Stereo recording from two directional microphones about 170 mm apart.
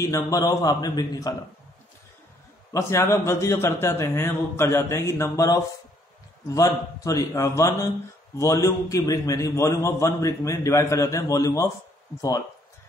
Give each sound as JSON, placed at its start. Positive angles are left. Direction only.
{"t": 0.0, "sound": "a man's voice", "side_deg": 20}
{"t": 2.7, "sound": "a man's voice", "side_deg": 15}